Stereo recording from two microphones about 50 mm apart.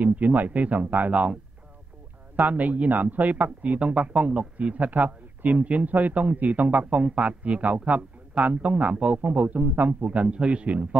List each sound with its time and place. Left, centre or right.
0.0 s speech: right
2.3 s a man's voice: right